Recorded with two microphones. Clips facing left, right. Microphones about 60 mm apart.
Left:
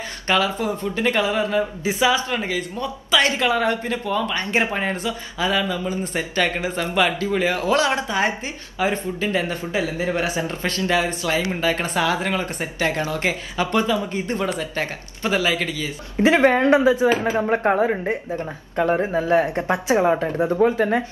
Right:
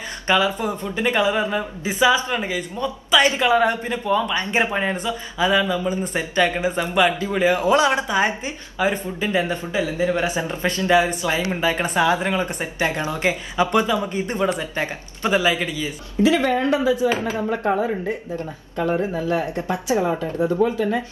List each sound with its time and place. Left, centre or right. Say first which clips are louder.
0.3 s speech: right 1 dB; centre
1.6 s speech: even; centre
2.4 s speech: right 1 dB; centre
9.9 s speech: right 2 dB; left
10.2 s speech: right 1 dB; right
16.2 s speech: left 2 dB; left